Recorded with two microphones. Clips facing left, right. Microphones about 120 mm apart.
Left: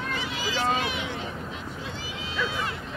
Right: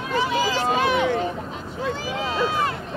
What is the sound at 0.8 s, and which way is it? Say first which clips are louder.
Vehicle: right 10 dB; 50° right (ahead or behind).